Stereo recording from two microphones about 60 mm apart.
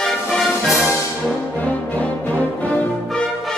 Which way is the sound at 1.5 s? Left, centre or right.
Left.